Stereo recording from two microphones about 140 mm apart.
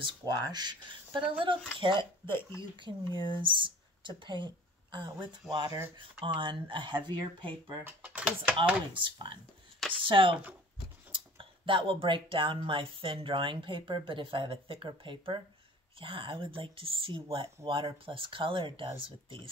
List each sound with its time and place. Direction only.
0.2 s speech: 30° right (ahead or behind)
7.8 s speech: 10° right (ahead or behind)
8.9 s speech: 35° right (ahead or behind)